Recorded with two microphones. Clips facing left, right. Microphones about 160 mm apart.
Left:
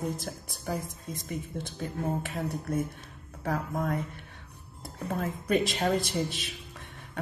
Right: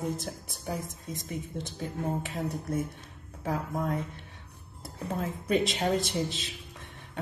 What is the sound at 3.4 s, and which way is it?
Speech, 20° right (ahead or behind).